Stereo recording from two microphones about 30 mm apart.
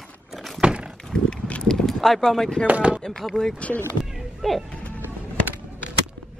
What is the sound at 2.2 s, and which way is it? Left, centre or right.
Speech, centre.